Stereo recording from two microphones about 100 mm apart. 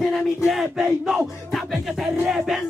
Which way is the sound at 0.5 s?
5° right (ahead or behind).